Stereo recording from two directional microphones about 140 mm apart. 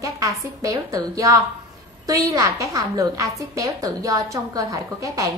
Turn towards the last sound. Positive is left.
turn(degrees=-25)  # may be behind; listen again after turning